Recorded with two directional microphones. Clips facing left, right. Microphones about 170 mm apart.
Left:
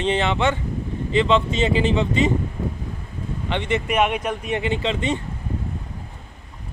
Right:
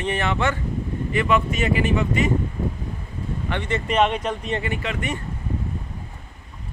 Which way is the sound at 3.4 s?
20° left (ahead or behind).